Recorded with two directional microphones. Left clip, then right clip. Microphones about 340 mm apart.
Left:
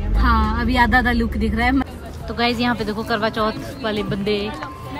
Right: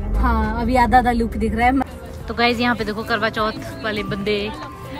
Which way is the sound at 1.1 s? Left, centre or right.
Right.